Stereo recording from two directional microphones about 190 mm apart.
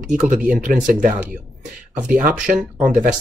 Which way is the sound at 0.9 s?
45° right (ahead or behind).